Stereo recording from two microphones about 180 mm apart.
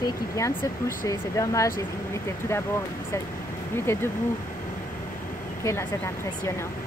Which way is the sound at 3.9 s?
15° left (ahead or behind).